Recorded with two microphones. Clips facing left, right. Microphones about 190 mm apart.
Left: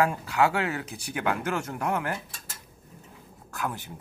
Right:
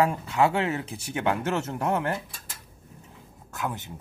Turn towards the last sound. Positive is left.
turn(degrees=-20)  # may be behind; listen again after turning